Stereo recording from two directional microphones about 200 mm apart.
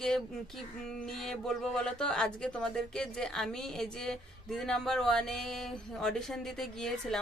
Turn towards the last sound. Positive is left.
turn(degrees=0)  # may be behind; listen again after turning